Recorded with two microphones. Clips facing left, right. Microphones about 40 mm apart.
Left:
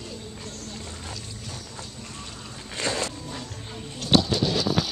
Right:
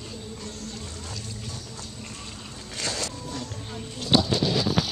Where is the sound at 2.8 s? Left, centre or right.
Left.